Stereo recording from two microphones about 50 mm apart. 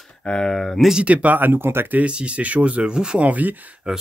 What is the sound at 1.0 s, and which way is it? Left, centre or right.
Speech, right.